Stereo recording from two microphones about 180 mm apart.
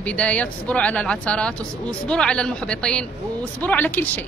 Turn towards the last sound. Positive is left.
turn(degrees=10)  # may be behind; listen again after turning